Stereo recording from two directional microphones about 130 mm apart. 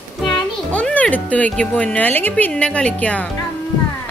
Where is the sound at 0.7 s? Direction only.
10° left (ahead or behind).